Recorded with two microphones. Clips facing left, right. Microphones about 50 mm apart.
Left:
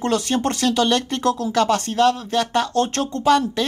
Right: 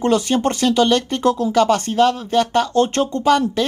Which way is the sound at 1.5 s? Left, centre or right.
Centre.